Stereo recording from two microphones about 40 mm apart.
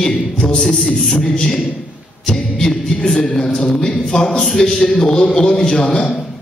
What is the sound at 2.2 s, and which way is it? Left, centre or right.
A capella, centre.